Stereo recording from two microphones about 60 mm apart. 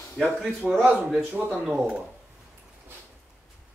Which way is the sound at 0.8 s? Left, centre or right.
Right.